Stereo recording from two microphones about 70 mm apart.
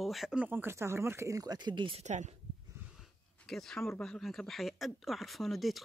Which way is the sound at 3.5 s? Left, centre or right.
Centre.